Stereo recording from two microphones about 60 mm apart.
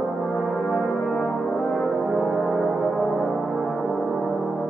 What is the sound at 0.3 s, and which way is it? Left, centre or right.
Brass instrument, left.